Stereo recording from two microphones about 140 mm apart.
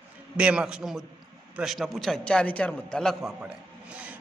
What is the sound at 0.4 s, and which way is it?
A man's voice, 5° right (ahead or behind).